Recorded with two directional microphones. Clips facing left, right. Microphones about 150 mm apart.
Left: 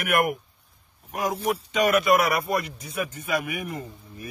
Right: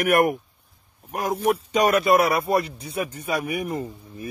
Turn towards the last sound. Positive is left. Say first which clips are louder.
# right 6 dB
turn(degrees=-35)  # may be behind; listen again after turning